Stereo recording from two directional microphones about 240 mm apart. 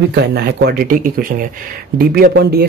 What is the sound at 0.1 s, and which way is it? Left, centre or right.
Speech, right.